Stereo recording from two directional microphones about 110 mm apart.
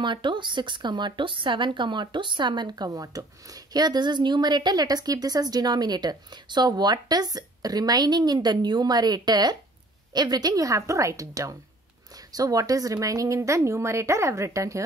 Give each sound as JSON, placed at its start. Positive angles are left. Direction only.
{"t": 0.0, "sound": "a woman's voice", "side_deg": -45}